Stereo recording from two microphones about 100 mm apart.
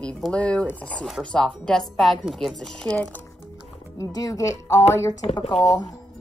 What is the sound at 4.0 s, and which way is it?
Speech, 40° left (ahead or behind).